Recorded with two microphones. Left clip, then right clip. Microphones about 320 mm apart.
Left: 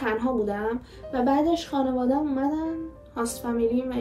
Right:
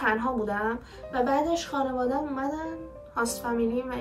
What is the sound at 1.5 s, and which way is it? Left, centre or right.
Speech, left.